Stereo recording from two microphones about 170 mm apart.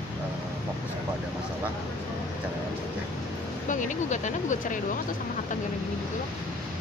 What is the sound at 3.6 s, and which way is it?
Speech, 50° left (ahead or behind).